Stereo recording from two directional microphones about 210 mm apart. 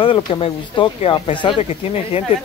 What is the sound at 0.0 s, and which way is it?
Speech, 25° left (ahead or behind).